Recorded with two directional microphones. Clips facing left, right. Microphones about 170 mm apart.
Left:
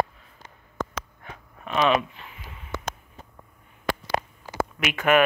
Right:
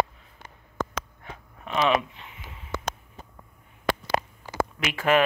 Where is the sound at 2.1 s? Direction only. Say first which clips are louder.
Left 1 dB; 25° right (ahead or behind).